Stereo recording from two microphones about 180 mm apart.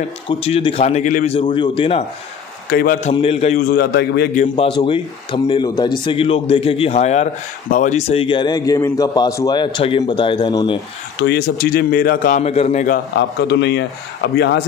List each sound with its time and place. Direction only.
0.3 s speech: 30° left (ahead or behind)
2.7 s speech: 55° left (ahead or behind)
3.0 s speech: 35° left (ahead or behind)
3.6 s speech: 65° left (ahead or behind)
4.7 s a man's voice: 30° left (ahead or behind)
11.1 s speech: 65° left (ahead or behind)
12.4 s speech: 35° left (ahead or behind)
12.9 s a man's voice: 75° left (ahead or behind)